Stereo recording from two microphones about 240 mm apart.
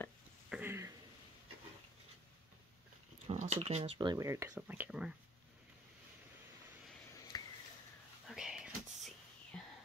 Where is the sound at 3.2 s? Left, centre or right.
Right; by 5.1 s centre.